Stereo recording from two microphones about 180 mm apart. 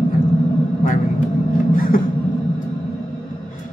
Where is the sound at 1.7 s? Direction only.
50° left (ahead or behind).